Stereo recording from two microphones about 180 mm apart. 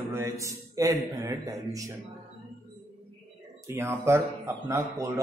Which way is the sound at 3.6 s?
15° right (ahead or behind).